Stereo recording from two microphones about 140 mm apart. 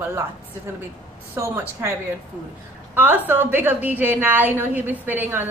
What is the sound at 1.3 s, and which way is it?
A woman's voice, 15° right (ahead or behind).